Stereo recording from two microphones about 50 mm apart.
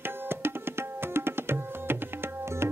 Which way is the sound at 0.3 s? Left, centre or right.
Right.